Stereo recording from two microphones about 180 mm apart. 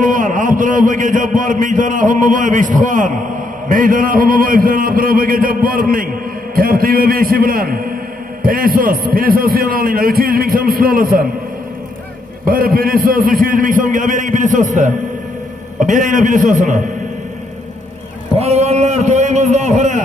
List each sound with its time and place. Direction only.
0.0 s a man's voice: 45° right (ahead or behind)
12.4 s a man's voice: 55° right (ahead or behind)
18.4 s a man's voice: 35° right (ahead or behind)